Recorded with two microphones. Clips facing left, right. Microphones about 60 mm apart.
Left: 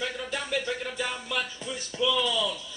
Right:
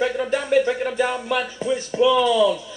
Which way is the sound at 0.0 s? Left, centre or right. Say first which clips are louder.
Right 11 dB; right.